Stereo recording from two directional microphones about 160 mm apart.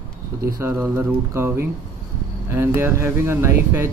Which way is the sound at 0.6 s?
15° right (ahead or behind).